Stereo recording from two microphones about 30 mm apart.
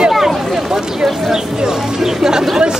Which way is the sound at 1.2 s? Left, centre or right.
Centre.